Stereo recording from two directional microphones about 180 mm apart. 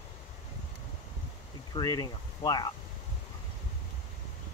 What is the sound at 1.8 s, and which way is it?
Speech, 20° left (ahead or behind).